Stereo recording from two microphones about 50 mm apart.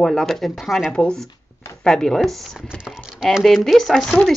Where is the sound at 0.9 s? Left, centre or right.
Centre.